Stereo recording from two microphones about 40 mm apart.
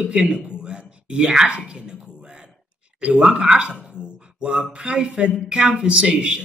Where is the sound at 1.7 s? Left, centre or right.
Right.